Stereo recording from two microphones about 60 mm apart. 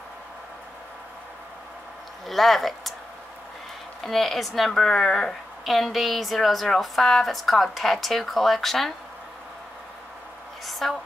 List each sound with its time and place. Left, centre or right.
2.2 s speech: centre
4.0 s speech: centre
10.6 s a sound: centre